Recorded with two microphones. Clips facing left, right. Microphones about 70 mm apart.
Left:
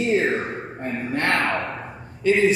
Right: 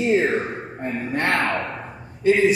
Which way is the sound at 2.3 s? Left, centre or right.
Right.